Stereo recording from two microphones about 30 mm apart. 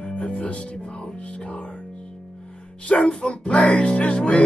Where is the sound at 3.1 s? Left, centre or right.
Left.